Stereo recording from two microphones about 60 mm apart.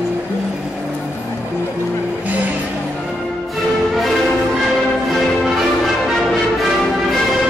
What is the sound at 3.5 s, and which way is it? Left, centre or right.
Music, centre.